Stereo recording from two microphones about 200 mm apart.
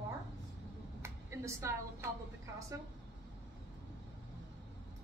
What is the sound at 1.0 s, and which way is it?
A woman's voice, 15° right (ahead or behind).